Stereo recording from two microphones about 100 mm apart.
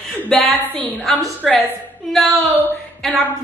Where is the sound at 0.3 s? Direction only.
Centre (ahead or behind).